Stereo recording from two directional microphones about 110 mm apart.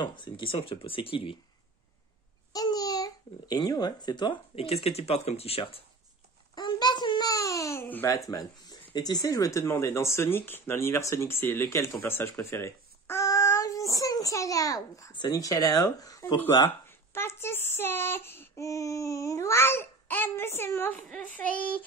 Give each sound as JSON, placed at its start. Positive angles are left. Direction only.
{"t": 0.0, "sound": "speech", "side_deg": 45}
{"t": 2.5, "sound": "speech", "side_deg": 35}
{"t": 4.6, "sound": "speech", "side_deg": 70}
{"t": 6.5, "sound": "babbling", "side_deg": 40}
{"t": 8.1, "sound": "speech", "side_deg": 30}
{"t": 16.6, "sound": "speech", "side_deg": 20}
{"t": 21.1, "sound": "child singing", "side_deg": 15}